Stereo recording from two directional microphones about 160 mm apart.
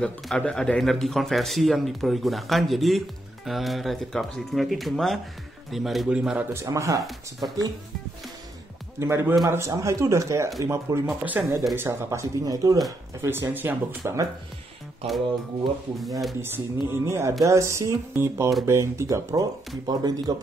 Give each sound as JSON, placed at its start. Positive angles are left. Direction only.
{"t": 0.0, "sound": "a man's voice", "side_deg": 5}
{"t": 6.5, "sound": "speech", "side_deg": -20}
{"t": 7.1, "sound": "a man's voice", "side_deg": 0}
{"t": 9.0, "sound": "speech", "side_deg": -15}
{"t": 16.3, "sound": "speech", "side_deg": -15}